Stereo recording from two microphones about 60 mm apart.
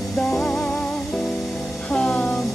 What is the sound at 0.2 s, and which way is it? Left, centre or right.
Music, centre.